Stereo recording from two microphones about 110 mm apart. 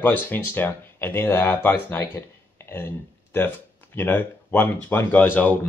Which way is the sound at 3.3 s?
20° left (ahead or behind).